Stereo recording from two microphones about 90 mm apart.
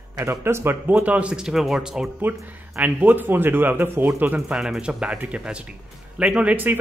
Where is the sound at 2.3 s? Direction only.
20° right (ahead or behind).